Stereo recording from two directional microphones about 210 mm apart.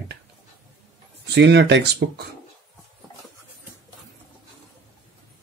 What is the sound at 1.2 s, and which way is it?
Speech, 55° right (ahead or behind).